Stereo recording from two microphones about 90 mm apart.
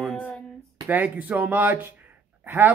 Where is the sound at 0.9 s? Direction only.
20° right (ahead or behind).